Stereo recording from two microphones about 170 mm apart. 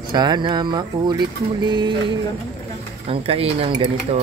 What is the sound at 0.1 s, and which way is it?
Music, 25° right (ahead or behind).